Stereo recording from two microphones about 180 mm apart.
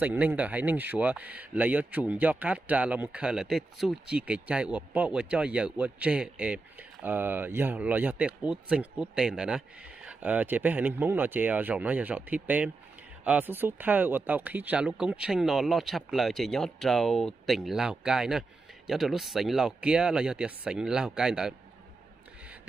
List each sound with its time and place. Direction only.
0.0 s speech: 10° right (ahead or behind)